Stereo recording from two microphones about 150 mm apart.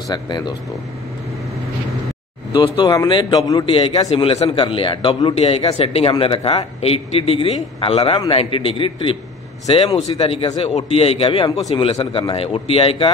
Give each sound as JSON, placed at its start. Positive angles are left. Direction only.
{"t": 0.1, "sound": "speech", "side_deg": 30}
{"t": 2.5, "sound": "speech", "side_deg": 30}
{"t": 3.6, "sound": "a man's voice", "side_deg": 40}